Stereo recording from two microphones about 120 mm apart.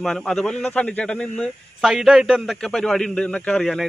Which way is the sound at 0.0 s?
5° left (ahead or behind).